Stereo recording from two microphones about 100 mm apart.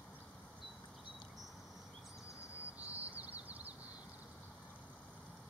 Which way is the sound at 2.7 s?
15° right (ahead or behind).